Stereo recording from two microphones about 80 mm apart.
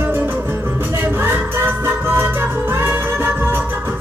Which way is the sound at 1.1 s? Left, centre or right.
Right.